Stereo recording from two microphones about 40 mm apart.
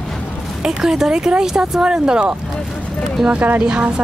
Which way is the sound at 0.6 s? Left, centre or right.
Centre.